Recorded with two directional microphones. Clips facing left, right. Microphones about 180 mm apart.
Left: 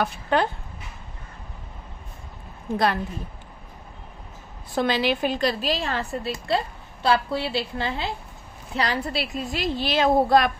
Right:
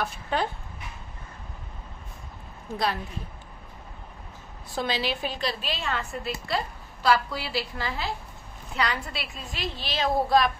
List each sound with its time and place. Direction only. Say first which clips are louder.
0.0 s speech: left 5 dB; 70° left (ahead or behind)
4.7 s a woman's voice: left 6 dB; 55° left (ahead or behind)